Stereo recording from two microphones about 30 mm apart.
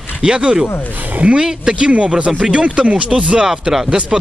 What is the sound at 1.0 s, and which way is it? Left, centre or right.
Speech, right.